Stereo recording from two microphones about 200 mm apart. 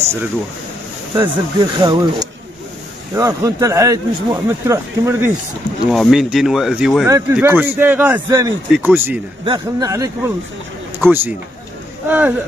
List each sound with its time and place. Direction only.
1.2 s speech: 20° right (ahead or behind)
5.9 s speech: centre (ahead or behind)
9.4 s speech: 20° right (ahead or behind)